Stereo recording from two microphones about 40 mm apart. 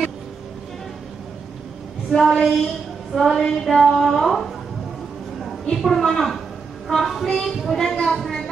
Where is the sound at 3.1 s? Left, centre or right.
Centre.